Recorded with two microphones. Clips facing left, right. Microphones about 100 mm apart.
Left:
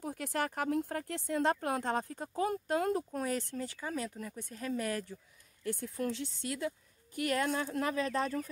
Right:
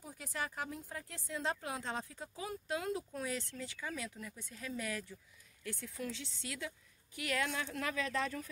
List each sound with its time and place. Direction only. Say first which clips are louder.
0.0 s speech: left 7 dB; 65° left (ahead or behind); by 8.5 s 35° left (ahead or behind)